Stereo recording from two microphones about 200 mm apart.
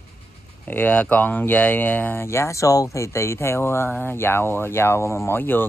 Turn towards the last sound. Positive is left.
turn(degrees=10)  # may be behind; listen again after turning